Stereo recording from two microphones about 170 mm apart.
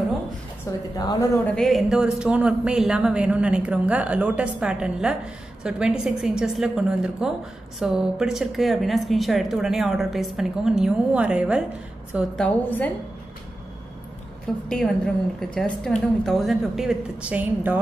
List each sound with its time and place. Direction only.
0.9 s speech: 20° left (ahead or behind)
1.5 s a man's voice: centre (ahead or behind)
12.4 s a woman's voice: 10° left (ahead or behind)
14.7 s a man's voice: 5° left (ahead or behind)